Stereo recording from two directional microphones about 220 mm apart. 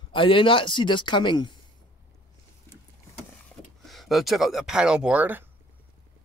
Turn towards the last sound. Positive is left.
turn(degrees=-5)  # may be behind; listen again after turning